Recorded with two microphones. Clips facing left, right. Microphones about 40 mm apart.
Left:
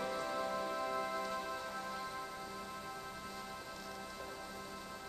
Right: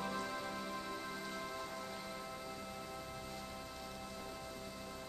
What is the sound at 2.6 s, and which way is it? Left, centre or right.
Music, centre.